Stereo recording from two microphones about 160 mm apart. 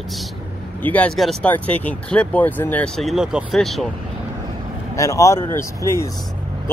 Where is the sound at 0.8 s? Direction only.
10° left (ahead or behind).